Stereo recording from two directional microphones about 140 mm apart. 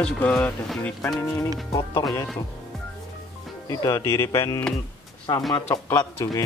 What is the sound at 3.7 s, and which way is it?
Speech, 25° left (ahead or behind).